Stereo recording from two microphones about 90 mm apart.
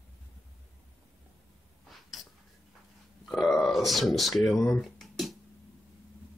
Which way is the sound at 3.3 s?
Centre (ahead or behind).